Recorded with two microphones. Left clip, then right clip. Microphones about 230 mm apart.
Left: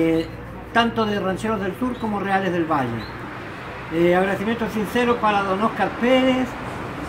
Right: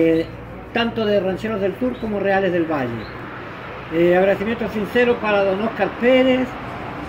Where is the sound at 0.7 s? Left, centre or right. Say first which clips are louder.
Right 1 dB; centre.